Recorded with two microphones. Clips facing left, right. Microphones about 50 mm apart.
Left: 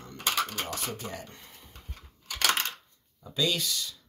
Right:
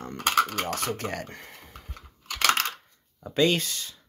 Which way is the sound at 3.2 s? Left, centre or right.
Right.